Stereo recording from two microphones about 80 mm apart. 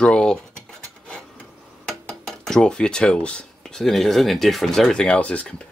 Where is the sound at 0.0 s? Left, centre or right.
Centre.